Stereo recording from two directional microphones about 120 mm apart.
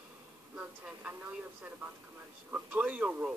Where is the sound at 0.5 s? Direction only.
10° right (ahead or behind).